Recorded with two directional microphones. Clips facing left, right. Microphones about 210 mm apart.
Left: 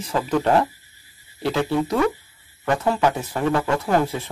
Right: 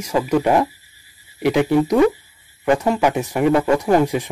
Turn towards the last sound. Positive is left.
turn(degrees=-15)  # may be behind; listen again after turning